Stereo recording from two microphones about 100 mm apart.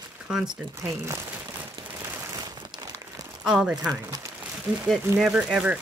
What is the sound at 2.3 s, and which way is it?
Crumpling, 40° right (ahead or behind).